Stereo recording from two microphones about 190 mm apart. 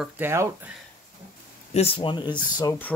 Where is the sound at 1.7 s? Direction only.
30° left (ahead or behind).